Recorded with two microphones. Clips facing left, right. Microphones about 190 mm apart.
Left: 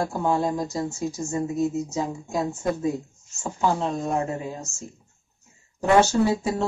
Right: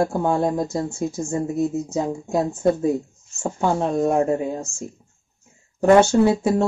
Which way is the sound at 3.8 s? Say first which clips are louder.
Right 7 dB; 55° right (ahead or behind).